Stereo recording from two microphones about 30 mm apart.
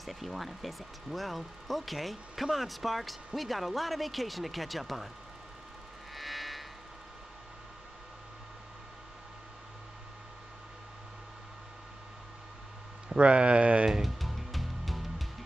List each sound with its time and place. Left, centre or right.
0.0 s speech: centre
6.1 s music: centre
13.1 s speech: right
14.0 s music: centre